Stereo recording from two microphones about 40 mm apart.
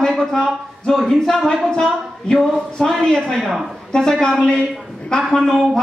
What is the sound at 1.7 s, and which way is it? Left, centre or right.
A woman's voice, left.